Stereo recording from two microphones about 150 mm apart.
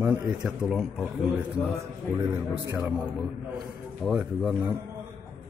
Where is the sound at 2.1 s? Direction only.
20° right (ahead or behind).